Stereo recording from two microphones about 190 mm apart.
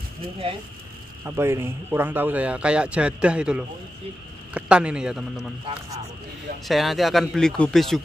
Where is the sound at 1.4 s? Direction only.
15° right (ahead or behind).